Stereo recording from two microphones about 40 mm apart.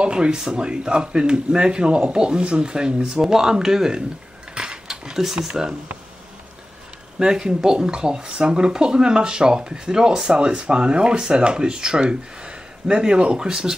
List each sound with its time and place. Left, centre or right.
0.0 s speech: right
7.2 s speech: centre